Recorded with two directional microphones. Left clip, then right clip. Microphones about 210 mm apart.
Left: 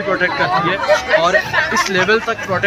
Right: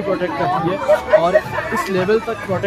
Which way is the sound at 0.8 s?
45° right (ahead or behind).